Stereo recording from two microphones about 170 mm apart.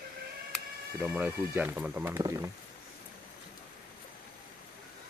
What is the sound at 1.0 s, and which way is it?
Speech, 10° right (ahead or behind).